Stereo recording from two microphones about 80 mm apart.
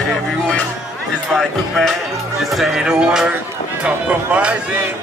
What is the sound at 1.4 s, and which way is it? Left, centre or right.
Speech, centre.